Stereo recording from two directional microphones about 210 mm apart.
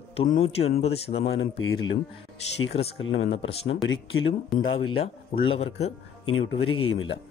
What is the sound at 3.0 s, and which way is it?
Speech, 65° left (ahead or behind).